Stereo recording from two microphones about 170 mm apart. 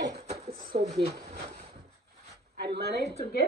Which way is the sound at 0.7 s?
40° right (ahead or behind).